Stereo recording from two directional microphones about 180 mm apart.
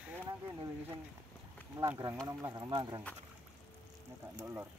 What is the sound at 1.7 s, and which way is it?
Speech, 20° right (ahead or behind).